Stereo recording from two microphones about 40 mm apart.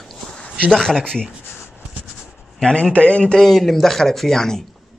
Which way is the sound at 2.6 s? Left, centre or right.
Left.